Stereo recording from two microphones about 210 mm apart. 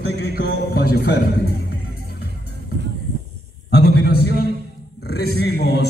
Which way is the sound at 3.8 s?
50° left (ahead or behind).